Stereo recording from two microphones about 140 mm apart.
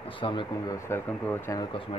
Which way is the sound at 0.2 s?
35° left (ahead or behind).